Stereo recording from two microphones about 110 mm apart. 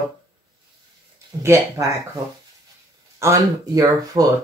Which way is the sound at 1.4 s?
30° right (ahead or behind).